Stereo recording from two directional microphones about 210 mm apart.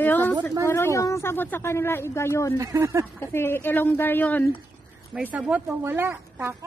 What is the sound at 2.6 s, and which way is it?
Speech, 15° right (ahead or behind).